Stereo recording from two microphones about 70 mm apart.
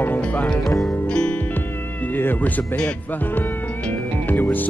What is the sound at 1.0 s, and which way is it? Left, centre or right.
Music, centre.